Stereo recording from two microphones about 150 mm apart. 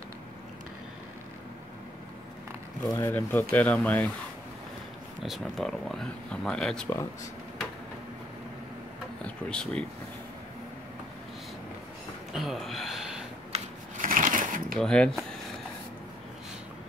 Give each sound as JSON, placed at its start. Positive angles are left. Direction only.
{"t": 2.9, "sound": "speech", "side_deg": 15}
{"t": 5.2, "sound": "speech", "side_deg": 0}
{"t": 9.2, "sound": "speech", "side_deg": 5}
{"t": 12.3, "sound": "speech", "side_deg": 0}
{"t": 13.5, "sound": "sewing machine", "side_deg": -60}
{"t": 14.8, "sound": "speech", "side_deg": 5}